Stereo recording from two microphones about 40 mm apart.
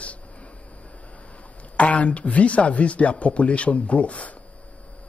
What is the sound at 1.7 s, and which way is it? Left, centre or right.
Speech, left.